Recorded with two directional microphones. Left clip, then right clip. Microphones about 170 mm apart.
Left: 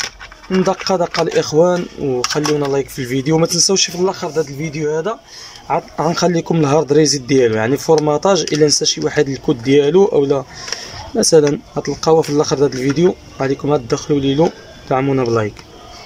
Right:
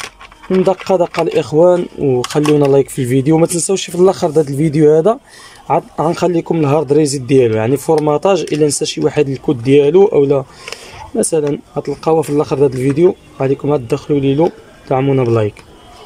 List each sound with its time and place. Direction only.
0.0 s a sound: 5° right (ahead or behind)
1.2 s speech: 15° right (ahead or behind); by 5.1 s 45° right (ahead or behind)
5.7 s speech: 15° right (ahead or behind)